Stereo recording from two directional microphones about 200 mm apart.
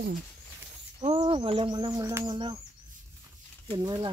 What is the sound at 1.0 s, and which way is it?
Speech, 30° right (ahead or behind).